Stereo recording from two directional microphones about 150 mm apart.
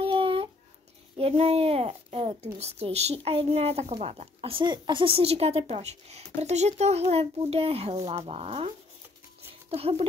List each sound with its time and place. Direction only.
0.0 s babbling: 40° right (ahead or behind)
1.1 s speech: 40° right (ahead or behind)